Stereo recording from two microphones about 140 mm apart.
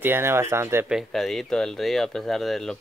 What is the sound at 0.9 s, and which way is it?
Speech, centre (ahead or behind).